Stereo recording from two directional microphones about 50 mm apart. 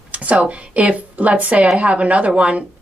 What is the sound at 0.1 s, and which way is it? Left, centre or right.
A woman's voice, right.